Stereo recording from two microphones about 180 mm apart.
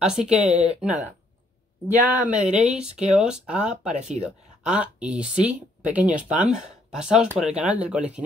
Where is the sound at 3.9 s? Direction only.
40° right (ahead or behind).